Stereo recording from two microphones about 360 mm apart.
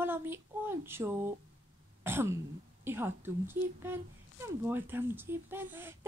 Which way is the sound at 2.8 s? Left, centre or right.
Centre.